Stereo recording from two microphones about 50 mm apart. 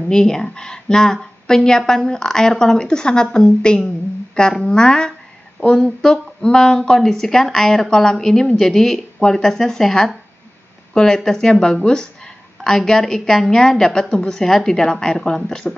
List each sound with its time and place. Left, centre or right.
0.1 s a woman's voice: centre
6.4 s a woman's voice: centre